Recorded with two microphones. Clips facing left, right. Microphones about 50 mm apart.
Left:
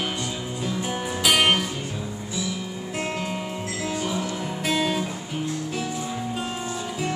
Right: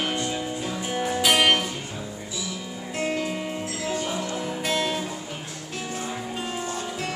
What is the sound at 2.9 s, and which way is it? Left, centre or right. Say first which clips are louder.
Music: right 2 dB; centre.